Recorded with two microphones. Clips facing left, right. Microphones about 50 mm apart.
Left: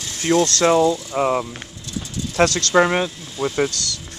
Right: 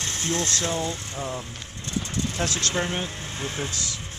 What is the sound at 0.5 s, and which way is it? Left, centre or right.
Speech, left.